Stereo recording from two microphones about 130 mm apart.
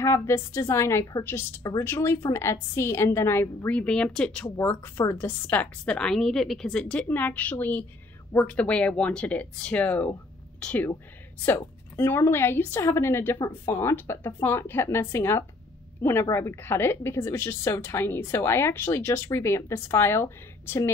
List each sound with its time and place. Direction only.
0.0 s a woman's voice: 20° left (ahead or behind)
4.5 s a woman's voice: 20° left (ahead or behind)